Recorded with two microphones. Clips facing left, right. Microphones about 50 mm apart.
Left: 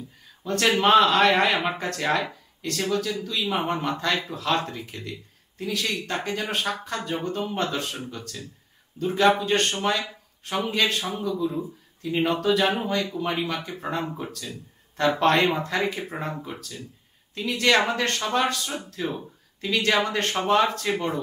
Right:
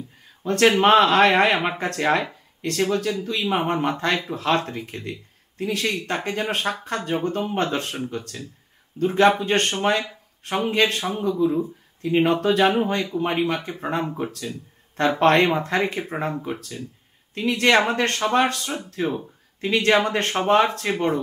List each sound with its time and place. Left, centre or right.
0.4 s speech: right